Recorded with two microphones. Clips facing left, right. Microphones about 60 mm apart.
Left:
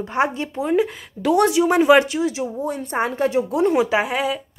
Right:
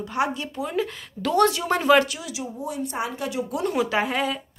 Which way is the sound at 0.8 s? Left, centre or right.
Centre.